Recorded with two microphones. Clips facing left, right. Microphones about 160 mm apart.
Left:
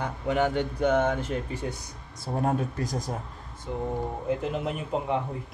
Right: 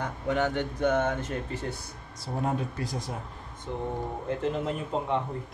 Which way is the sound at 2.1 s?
50° left (ahead or behind).